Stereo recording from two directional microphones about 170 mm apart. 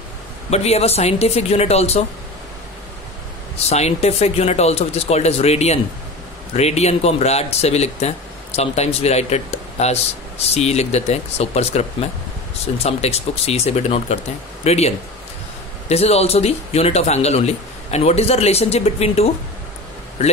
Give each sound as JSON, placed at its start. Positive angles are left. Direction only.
{"t": 0.5, "sound": "a man's voice", "side_deg": 40}
{"t": 3.6, "sound": "a man's voice", "side_deg": 40}